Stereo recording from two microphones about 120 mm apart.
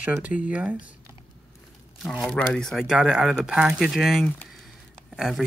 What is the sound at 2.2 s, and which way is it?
Speech, 5° left (ahead or behind).